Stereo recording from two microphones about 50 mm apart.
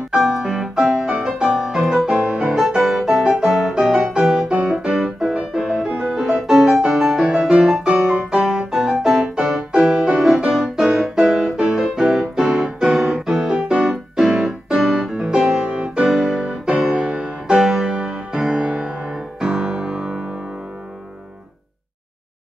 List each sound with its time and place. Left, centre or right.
0.1 s music: centre
4.6 s piano: centre
6.1 s music: centre
7.2 s piano: centre
8.0 s music: centre
10.1 s music: centre
16.1 s music: centre
17.1 s music: right
17.6 s music: centre
18.5 s music: right
19.4 s piano: centre